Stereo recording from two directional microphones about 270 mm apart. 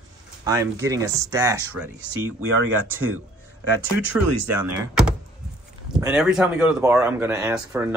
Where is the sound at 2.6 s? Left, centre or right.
Right.